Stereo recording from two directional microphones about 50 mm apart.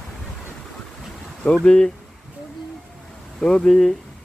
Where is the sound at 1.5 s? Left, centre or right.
Centre.